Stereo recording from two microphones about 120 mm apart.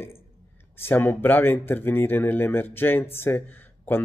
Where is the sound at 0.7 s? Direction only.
20° left (ahead or behind).